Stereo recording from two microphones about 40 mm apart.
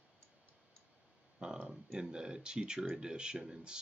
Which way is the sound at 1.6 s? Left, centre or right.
Centre.